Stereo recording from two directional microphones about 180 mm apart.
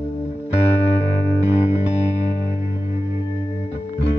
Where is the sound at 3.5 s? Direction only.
35° left (ahead or behind).